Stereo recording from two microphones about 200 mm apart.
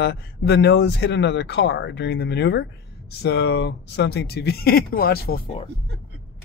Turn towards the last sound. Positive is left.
turn(degrees=50)  # may be behind; listen again after turning